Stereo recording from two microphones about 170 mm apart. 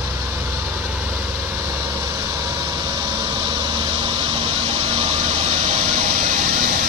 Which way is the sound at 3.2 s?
25° right (ahead or behind).